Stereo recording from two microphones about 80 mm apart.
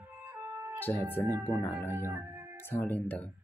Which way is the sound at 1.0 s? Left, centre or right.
Right.